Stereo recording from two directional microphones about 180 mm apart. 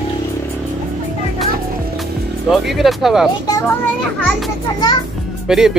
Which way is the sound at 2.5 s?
Centre (ahead or behind).